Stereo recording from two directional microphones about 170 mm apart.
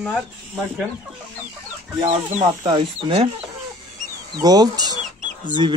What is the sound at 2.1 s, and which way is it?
Speech, 30° right (ahead or behind).